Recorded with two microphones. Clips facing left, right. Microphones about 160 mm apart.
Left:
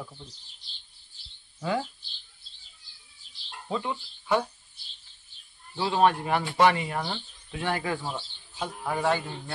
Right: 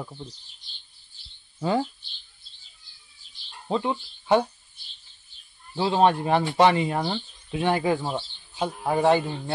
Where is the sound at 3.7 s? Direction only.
30° right (ahead or behind).